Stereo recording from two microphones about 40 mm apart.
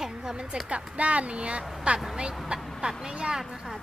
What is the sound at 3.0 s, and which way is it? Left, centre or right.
Speech, centre.